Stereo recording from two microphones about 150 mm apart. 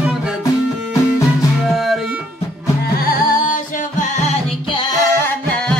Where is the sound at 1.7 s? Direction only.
Centre (ahead or behind).